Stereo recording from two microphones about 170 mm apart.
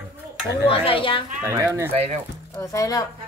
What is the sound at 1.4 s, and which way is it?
Speech, 15° right (ahead or behind).